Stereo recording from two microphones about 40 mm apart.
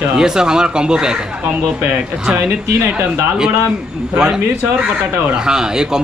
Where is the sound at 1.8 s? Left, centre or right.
Right.